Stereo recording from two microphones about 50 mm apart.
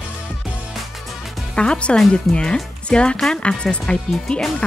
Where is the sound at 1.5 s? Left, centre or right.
Centre.